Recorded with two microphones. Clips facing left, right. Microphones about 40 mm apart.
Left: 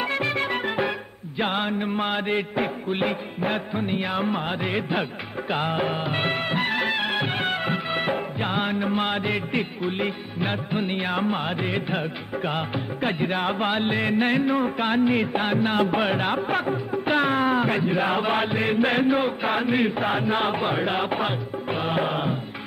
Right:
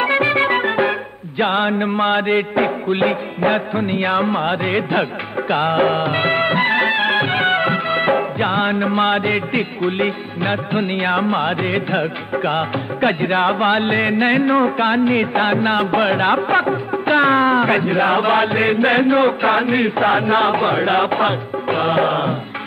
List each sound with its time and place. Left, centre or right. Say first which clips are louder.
0.0 s music: right 9 dB; right
14.8 s chant: right 6 dB; right
15.3 s music: right 6 dB; right
17.6 s music: right 7 dB; right
17.9 s chant: right 8 dB; right